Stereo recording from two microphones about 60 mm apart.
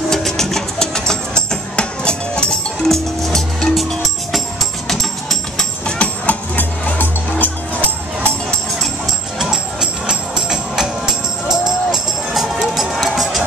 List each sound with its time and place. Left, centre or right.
0.1 s music: centre
5.9 s music: left
9.4 s music: centre